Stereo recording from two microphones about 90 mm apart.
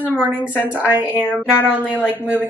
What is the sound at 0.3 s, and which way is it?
Speech, 20° left (ahead or behind).